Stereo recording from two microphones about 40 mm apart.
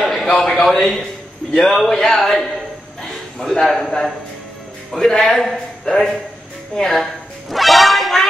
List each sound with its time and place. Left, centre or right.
0.0 s a sound: centre
0.7 s a man's voice: centre
4.9 s a man's voice: centre
6.7 s a woman's voice: centre
7.0 s speech: centre